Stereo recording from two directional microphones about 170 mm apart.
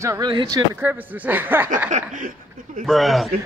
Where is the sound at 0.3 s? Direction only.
30° right (ahead or behind).